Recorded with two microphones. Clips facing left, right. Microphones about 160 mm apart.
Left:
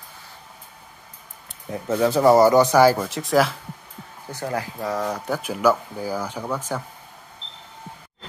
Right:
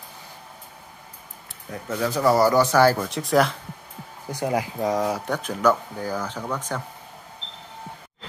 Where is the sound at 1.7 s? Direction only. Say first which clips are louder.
Left 6 dB; 25° left (ahead or behind).